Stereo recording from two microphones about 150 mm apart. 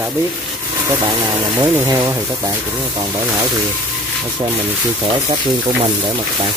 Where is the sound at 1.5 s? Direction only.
15° right (ahead or behind).